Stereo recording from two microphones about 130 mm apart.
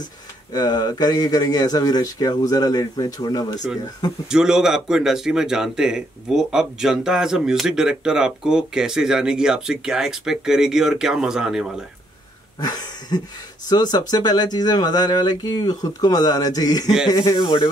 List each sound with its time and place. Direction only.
0.5 s speech: 30° left (ahead or behind)
4.3 s speech: 5° right (ahead or behind)
12.5 s a sound: 30° left (ahead or behind)
13.7 s speech: 30° left (ahead or behind)